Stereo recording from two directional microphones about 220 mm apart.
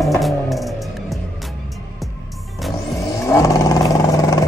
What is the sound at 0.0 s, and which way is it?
Music, centre (ahead or behind).